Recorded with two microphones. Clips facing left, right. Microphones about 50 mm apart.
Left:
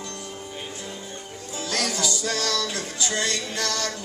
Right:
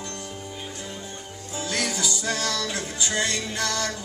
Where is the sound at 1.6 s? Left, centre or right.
Centre.